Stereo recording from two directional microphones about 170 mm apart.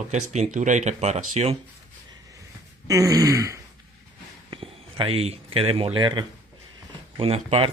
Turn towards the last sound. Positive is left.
turn(degrees=-35)  # may be behind; listen again after turning